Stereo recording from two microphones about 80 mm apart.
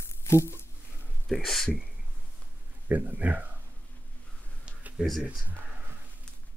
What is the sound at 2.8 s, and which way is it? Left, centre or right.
Speech, right.